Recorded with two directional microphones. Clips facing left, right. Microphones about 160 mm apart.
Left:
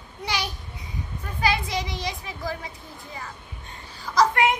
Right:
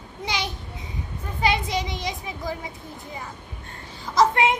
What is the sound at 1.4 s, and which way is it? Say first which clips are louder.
A child's voice: right 2 dB; 20° right (ahead or behind).